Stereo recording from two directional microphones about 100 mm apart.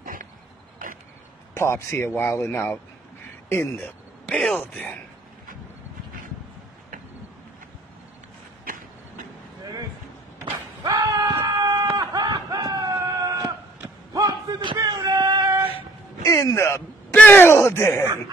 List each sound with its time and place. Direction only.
1.5 s speech: 25° left (ahead or behind)
4.3 s speech: 10° left (ahead or behind)
9.6 s vehicle: 40° right (ahead or behind)
10.4 s a sound: 45° right (ahead or behind)
11.3 s chicken: 40° right (ahead or behind)
12.0 s a sound: 40° right (ahead or behind)
14.8 s female singing: 40° right (ahead or behind)
16.3 s music: 30° left (ahead or behind)
17.1 s speech: 15° left (ahead or behind)